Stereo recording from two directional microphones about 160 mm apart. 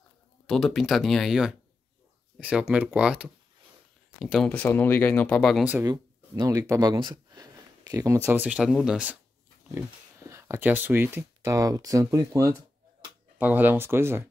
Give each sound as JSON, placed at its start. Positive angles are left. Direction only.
{"t": 0.5, "sound": "speech", "side_deg": 0}
{"t": 5.9, "sound": "speech", "side_deg": -25}